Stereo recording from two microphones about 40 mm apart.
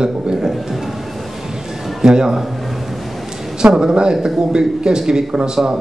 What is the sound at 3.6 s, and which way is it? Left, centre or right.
Speech, centre.